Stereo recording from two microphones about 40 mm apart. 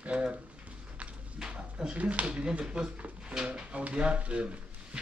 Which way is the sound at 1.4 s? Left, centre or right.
Right.